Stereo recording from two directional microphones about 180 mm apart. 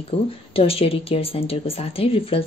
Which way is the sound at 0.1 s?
35° left (ahead or behind).